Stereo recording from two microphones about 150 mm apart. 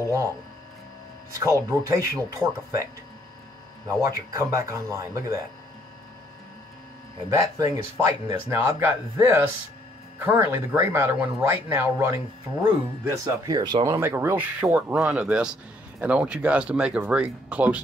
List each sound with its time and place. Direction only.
1.4 s speech: 20° right (ahead or behind)
7.2 s speech: 25° right (ahead or behind)
13.9 s speech: 15° right (ahead or behind)